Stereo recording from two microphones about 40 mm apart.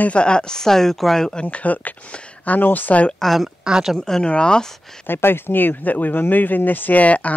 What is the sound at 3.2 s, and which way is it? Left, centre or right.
Speech, centre.